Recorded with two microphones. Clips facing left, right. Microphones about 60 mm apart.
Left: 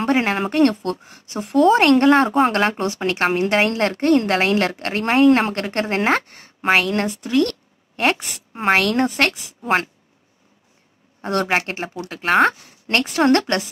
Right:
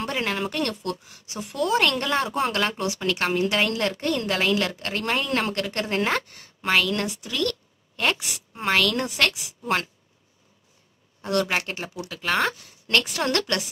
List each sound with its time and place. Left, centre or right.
0.0 s a woman's voice: left
11.1 s speech: left